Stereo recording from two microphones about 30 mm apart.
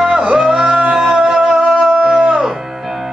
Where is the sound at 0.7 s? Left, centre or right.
Right.